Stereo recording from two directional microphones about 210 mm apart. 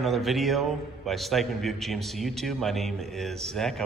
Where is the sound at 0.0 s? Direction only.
Centre (ahead or behind).